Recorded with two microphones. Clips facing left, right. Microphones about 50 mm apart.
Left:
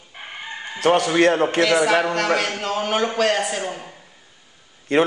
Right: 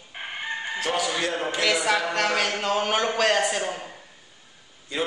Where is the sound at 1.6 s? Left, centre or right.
Centre.